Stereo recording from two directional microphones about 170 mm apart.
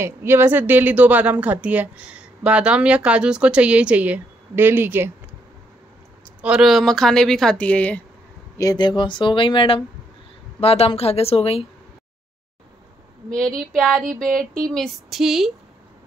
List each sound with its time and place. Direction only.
0.0 s a woman's voice: 15° right (ahead or behind)
6.4 s speech: 5° right (ahead or behind)
8.5 s a woman's voice: 25° left (ahead or behind)
13.7 s speech: centre (ahead or behind)